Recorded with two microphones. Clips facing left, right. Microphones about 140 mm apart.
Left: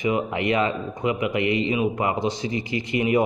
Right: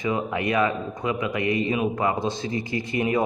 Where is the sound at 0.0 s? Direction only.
20° left (ahead or behind).